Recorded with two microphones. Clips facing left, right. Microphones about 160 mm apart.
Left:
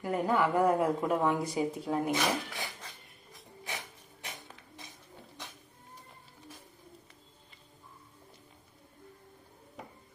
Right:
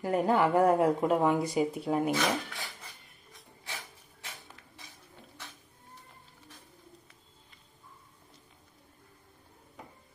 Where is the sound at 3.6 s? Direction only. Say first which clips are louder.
Left 3 dB; 20° left (ahead or behind).